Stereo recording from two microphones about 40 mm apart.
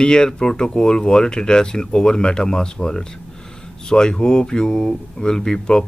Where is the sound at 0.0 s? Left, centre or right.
Left.